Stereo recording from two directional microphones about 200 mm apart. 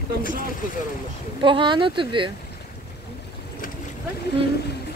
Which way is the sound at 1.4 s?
25° right (ahead or behind).